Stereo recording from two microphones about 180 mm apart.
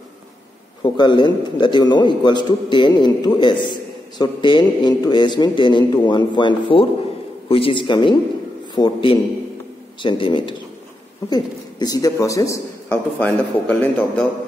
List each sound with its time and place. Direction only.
0.8 s a man's voice: 25° left (ahead or behind); by 14.2 s 5° left (ahead or behind)